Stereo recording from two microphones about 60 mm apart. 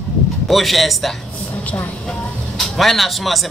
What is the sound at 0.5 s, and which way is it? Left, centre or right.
Speech, centre.